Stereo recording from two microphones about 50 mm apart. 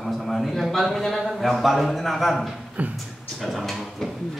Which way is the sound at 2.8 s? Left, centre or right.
Right.